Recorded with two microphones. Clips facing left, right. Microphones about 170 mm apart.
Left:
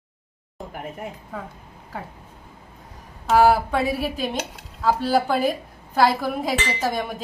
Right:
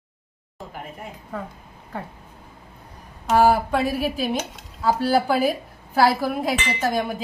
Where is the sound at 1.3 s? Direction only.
Centre (ahead or behind).